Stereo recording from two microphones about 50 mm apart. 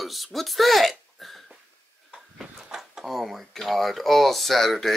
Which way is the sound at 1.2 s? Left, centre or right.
Centre.